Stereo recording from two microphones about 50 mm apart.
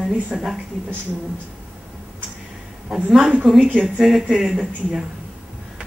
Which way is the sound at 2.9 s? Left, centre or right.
Centre.